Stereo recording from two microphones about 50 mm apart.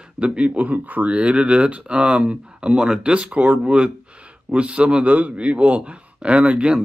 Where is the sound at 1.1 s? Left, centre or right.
Right.